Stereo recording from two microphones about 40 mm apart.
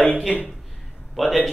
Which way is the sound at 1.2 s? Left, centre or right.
Centre.